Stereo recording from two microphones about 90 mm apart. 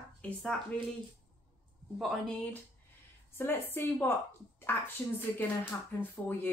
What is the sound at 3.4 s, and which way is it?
Speech, 25° left (ahead or behind).